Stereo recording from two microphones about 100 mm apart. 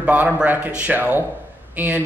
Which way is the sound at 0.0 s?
15° right (ahead or behind).